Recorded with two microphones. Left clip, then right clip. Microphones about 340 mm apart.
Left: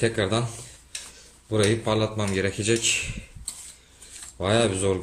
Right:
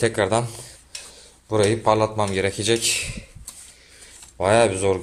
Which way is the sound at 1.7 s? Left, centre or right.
Centre.